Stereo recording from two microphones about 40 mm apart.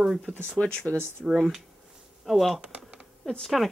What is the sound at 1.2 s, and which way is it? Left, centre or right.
Speech, centre.